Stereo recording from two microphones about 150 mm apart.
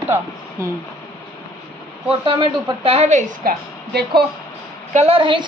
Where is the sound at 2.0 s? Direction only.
35° right (ahead or behind); by 4.2 s 80° right.